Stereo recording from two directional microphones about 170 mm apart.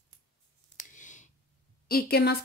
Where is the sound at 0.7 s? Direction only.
50° left (ahead or behind).